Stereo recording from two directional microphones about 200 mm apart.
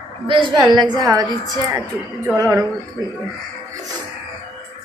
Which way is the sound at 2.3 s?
15° right (ahead or behind).